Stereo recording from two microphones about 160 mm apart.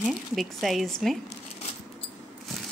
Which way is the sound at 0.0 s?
Centre (ahead or behind).